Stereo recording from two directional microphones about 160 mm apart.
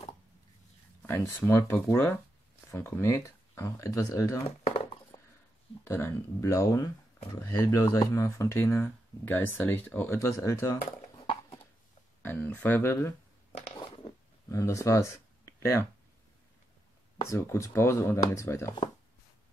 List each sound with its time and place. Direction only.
1.0 s speech: 15° left (ahead or behind)
5.1 s a sound: 25° left (ahead or behind)
5.9 s speech: 15° left (ahead or behind)
12.2 s speech: 10° left (ahead or behind)
13.5 s a sound: 40° left (ahead or behind)
14.5 s speech: 20° left (ahead or behind)
17.2 s speech: 20° left (ahead or behind)